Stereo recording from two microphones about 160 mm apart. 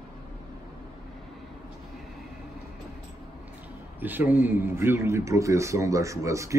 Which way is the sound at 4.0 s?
10° right (ahead or behind).